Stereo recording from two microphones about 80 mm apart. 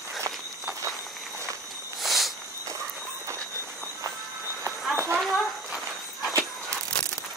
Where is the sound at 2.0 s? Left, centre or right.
Centre.